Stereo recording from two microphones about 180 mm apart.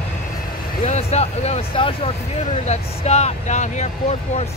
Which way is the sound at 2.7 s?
40° left (ahead or behind).